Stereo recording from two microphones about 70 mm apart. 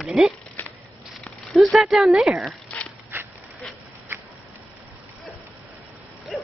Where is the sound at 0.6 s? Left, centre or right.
Left.